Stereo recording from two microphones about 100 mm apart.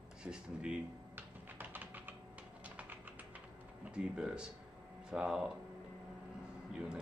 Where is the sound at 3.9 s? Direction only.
10° right (ahead or behind).